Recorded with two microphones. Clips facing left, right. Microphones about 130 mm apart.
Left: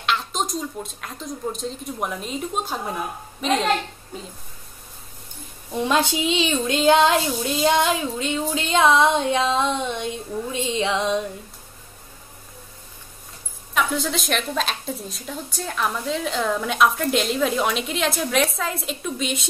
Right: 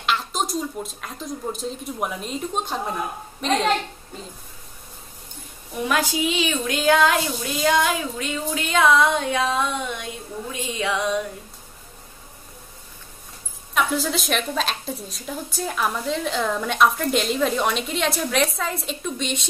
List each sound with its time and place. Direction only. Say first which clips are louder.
0.0 s a woman's voice: even; centre (ahead or behind)
5.7 s speech: left 2 dB; 25° left (ahead or behind)
13.7 s a woman's voice: right 1 dB; centre (ahead or behind)